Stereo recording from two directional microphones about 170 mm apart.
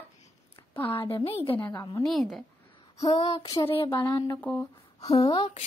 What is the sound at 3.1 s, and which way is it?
A woman's voice, 35° left (ahead or behind).